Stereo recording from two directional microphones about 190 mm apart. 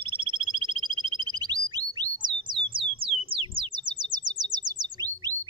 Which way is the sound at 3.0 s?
30° right (ahead or behind).